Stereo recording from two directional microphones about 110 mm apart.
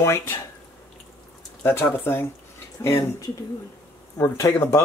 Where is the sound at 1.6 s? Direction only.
20° left (ahead or behind).